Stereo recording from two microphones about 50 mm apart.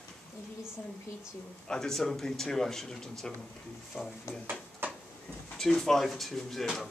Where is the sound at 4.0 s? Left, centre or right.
Centre.